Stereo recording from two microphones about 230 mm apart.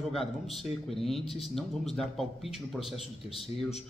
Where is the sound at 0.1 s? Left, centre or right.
Centre.